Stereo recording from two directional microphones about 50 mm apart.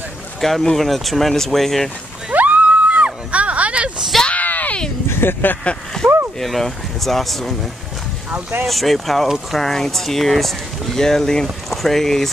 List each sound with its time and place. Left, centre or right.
0.4 s speech: centre
2.3 s a sound: right
4.3 s a sound: left
5.0 s speech: left
6.0 s boat: centre
6.4 s speech: centre
8.6 s speech: centre